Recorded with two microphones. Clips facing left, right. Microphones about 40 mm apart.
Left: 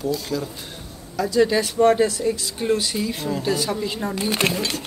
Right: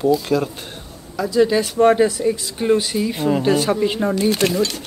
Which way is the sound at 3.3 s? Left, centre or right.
Right.